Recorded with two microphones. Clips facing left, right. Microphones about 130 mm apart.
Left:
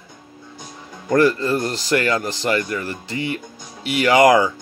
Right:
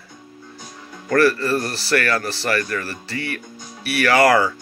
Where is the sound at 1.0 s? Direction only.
20° left (ahead or behind).